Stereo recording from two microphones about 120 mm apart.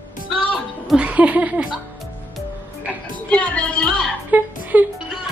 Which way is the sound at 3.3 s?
10° left (ahead or behind).